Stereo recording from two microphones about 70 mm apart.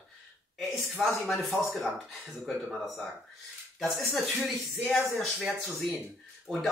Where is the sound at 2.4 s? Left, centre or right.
Centre.